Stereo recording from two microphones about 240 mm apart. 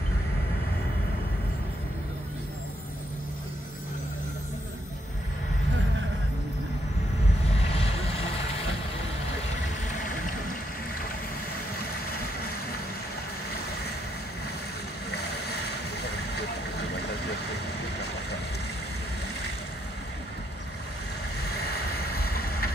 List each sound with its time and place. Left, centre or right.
22.2 s vehicle: left